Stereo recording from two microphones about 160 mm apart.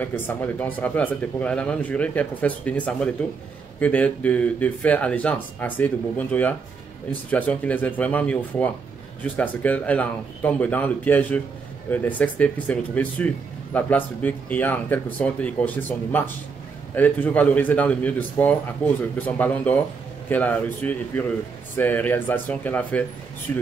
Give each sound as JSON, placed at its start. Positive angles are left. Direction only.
{"t": 0.0, "sound": "speech", "side_deg": 10}